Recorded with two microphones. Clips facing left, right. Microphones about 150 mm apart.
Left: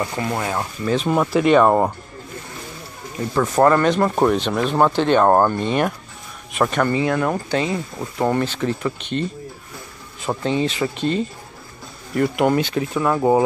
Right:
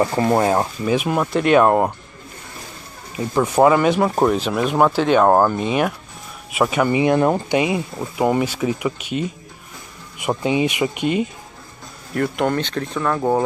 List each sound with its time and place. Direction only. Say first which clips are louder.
0.0 s rub: right 7 dB; 30° right (ahead or behind)
0.8 s speech: left 5 dB; 10° right (ahead or behind)
3.2 s speech: right 1 dB; 10° right (ahead or behind)
12.1 s speech: left 2 dB; 5° left (ahead or behind)